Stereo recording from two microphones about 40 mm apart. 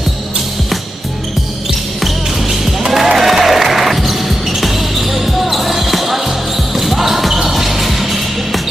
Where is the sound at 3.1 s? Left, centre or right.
Centre.